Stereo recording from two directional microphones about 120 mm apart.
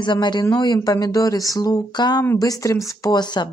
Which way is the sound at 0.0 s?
40° left (ahead or behind).